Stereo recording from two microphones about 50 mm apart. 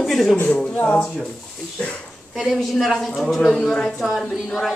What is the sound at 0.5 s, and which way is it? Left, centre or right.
Speech, centre.